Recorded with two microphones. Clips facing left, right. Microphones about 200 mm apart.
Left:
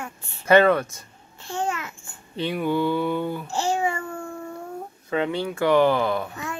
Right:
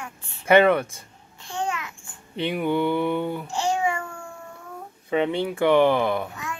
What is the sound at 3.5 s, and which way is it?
Speech, 40° left (ahead or behind).